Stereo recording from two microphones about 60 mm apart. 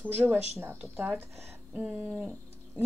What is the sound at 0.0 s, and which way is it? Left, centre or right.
Speech, right.